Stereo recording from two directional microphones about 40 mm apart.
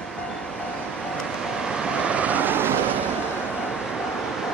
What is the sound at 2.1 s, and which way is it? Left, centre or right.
Vehicle, right.